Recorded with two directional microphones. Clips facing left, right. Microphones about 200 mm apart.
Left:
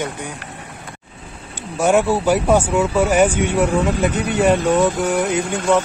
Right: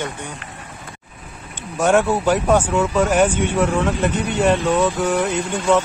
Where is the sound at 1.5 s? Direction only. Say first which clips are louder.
Left 1 dB; 10° left (ahead or behind).